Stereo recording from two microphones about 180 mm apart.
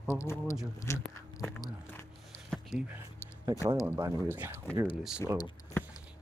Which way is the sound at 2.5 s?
5° right (ahead or behind).